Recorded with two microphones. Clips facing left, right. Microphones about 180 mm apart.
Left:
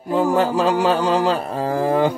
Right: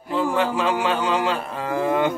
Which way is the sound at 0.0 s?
40° left (ahead or behind).